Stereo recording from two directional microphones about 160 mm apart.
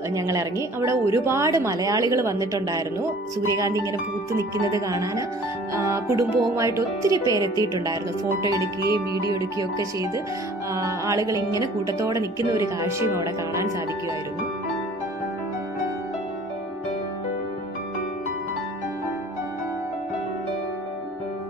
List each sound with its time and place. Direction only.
0.1 s a woman's voice: 20° right (ahead or behind)
8.5 s speech: 25° left (ahead or behind)
10.7 s a woman's voice: 20° right (ahead or behind)